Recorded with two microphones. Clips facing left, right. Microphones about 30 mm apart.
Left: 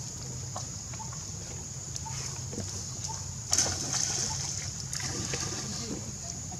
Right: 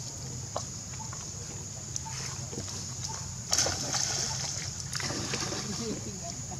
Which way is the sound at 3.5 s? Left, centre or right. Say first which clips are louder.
Right 1 dB; centre.